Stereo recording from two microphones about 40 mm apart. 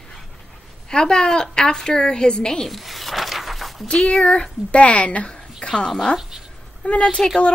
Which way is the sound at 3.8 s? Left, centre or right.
Left.